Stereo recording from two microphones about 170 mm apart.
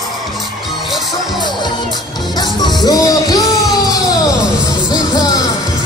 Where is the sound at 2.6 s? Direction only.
25° left (ahead or behind).